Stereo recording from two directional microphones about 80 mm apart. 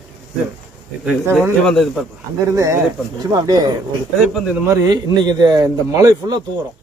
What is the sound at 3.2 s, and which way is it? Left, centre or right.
Speech, right.